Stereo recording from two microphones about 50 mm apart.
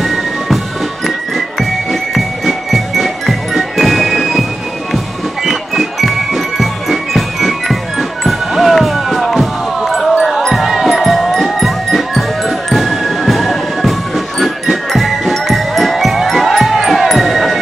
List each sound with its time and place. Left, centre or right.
0.0 s music: centre
1.6 s music: centre